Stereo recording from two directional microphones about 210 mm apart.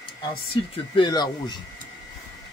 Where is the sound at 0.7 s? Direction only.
25° left (ahead or behind).